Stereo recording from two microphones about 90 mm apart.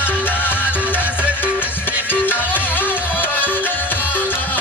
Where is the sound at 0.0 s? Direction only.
20° left (ahead or behind).